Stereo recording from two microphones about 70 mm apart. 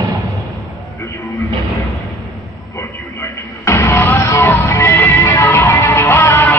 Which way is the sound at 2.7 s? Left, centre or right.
Left.